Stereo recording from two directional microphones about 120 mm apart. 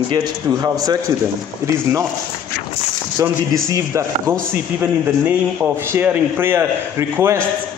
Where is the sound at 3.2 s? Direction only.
30° right (ahead or behind).